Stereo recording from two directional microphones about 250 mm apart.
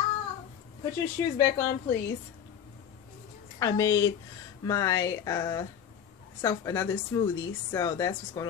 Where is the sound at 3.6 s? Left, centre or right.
Centre.